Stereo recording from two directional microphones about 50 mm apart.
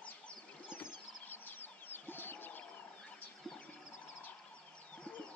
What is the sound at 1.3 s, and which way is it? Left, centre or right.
Chicken, left.